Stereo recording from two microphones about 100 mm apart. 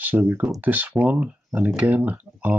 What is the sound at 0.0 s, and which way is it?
Speech, 20° right (ahead or behind).